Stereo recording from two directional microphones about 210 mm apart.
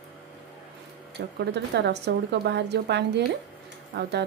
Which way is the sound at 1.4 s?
55° right (ahead or behind).